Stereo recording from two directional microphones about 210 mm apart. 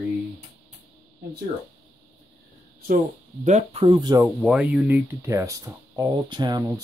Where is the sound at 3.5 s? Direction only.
30° right (ahead or behind).